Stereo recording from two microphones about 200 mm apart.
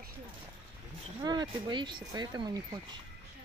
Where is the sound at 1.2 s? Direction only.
20° right (ahead or behind).